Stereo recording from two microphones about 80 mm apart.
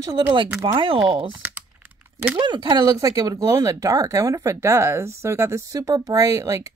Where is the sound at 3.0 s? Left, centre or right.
Right.